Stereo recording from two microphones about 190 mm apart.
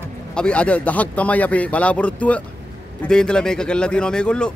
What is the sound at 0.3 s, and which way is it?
A man's voice, 5° left (ahead or behind).